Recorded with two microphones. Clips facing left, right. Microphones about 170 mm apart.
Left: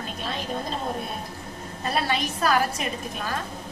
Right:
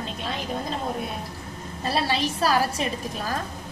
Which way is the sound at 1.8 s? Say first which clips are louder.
Right 1 dB; 30° right (ahead or behind).